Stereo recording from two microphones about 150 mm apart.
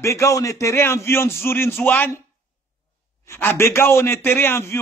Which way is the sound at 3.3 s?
15° left (ahead or behind).